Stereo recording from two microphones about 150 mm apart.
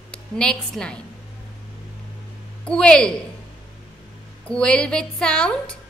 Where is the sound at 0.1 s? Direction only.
5° left (ahead or behind).